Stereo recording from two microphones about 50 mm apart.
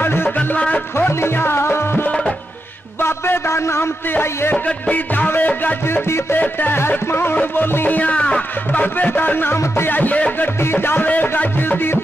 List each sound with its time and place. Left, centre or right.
0.0 s music: left
0.4 s music: left
0.9 s music: left
3.0 s a sound: left
4.1 s music: left
4.9 s music: left
5.9 s music: left
6.4 s music: left
10.6 s music: left
11.1 s music: left
11.7 s music: left